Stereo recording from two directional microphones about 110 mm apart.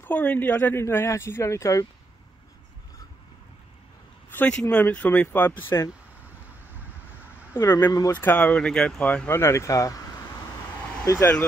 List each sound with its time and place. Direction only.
0.0 s speech: 15° left (ahead or behind)
4.3 s speech: 10° left (ahead or behind)
6.5 s vehicle: 15° right (ahead or behind)
7.5 s speech: 20° left (ahead or behind)
8.1 s speech: 15° left (ahead or behind)
9.4 s speech: 25° left (ahead or behind)
11.1 s speech: 25° left (ahead or behind)